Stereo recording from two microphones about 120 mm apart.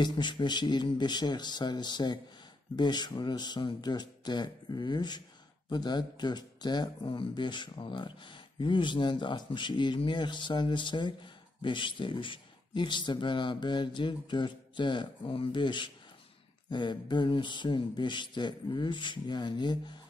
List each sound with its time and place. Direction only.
0.0 s speech: 40° left (ahead or behind)